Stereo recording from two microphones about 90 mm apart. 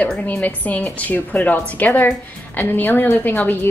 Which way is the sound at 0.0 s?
15° left (ahead or behind).